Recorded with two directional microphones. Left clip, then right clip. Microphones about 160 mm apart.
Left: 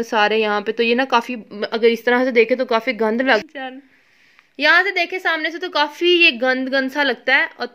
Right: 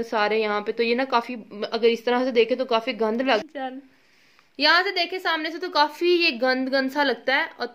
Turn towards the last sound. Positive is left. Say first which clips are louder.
# left 6 dB
turn(degrees=40)  # may be behind; listen again after turning